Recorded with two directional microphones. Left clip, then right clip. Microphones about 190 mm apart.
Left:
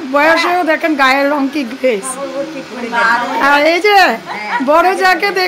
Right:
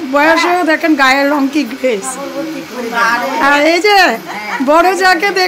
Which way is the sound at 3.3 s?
Centre (ahead or behind).